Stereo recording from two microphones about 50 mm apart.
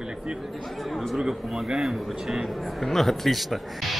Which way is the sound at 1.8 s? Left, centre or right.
Centre.